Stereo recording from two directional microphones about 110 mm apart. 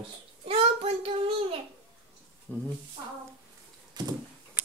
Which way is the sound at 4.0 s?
40° right (ahead or behind).